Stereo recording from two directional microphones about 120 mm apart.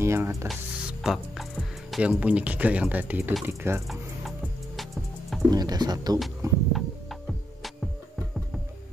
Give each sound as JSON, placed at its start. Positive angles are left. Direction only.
{"t": 0.0, "sound": "speech", "side_deg": -20}
{"t": 0.5, "sound": "speech", "side_deg": -5}
{"t": 3.8, "sound": "music", "side_deg": 0}
{"t": 5.5, "sound": "speech", "side_deg": -35}
{"t": 6.4, "sound": "music", "side_deg": -25}